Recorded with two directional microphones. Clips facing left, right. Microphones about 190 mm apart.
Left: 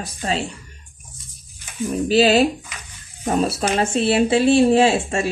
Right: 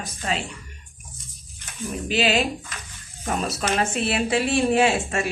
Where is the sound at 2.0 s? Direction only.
35° left (ahead or behind).